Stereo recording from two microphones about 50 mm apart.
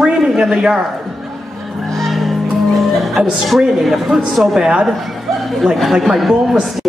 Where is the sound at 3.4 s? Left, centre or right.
Centre.